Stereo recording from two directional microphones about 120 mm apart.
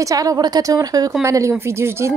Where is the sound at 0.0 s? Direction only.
30° right (ahead or behind).